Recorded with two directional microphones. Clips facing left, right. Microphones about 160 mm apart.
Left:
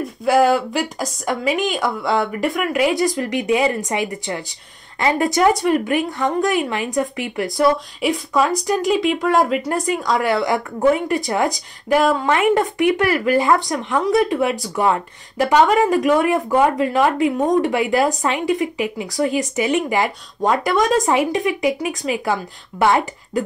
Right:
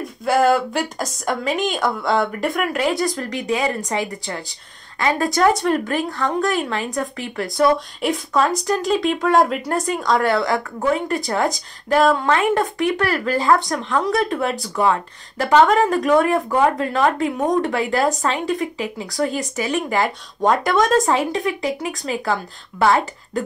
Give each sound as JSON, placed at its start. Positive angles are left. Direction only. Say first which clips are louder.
{"t": 0.2, "sound": "speech", "louder": "left 1 dB", "side_deg": 5}
{"t": 20.4, "sound": "speech", "louder": "even", "side_deg": 5}
{"t": 21.0, "sound": "speech", "louder": "left 2 dB", "side_deg": 15}